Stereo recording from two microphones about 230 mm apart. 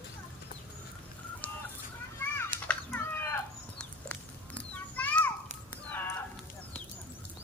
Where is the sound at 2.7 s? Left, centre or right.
Centre.